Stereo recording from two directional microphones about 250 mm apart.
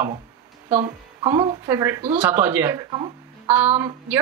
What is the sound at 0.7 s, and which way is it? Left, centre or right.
A woman's voice, right.